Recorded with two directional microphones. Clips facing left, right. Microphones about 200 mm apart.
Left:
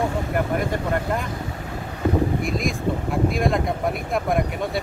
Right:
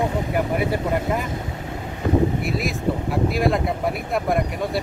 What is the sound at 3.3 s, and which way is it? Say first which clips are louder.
Speech: right 3 dB; 5° right (ahead or behind).